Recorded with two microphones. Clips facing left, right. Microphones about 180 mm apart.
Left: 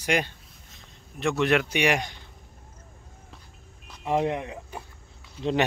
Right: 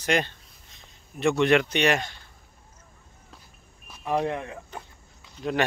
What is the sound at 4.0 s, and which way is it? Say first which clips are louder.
Speech: left 1 dB; 20° left (ahead or behind).